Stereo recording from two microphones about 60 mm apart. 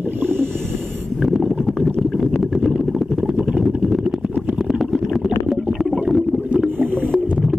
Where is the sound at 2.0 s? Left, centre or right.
Centre.